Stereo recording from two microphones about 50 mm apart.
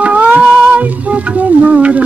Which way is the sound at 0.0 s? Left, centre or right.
Right.